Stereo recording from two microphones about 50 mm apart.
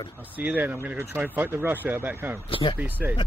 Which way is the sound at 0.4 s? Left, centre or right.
Right.